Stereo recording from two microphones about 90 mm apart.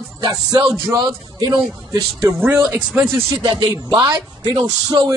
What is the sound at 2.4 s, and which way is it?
Speech, 25° right (ahead or behind).